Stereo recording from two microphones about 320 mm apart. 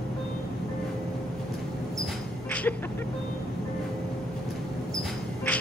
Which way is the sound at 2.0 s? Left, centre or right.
Centre.